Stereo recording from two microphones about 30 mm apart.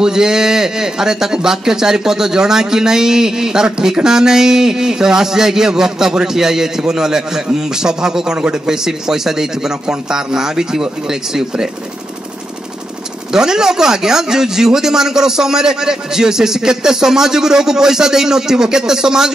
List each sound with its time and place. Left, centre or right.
0.0 s a man's voice: right
13.3 s a man's voice: centre